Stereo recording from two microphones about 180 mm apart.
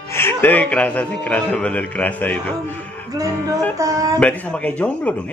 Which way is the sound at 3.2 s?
20° right (ahead or behind).